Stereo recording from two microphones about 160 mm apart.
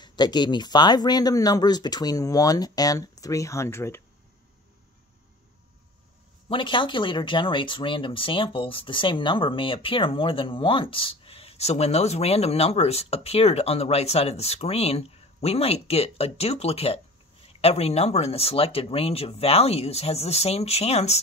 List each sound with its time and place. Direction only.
0.0 s speech: 25° left (ahead or behind)
6.5 s speech: 30° left (ahead or behind)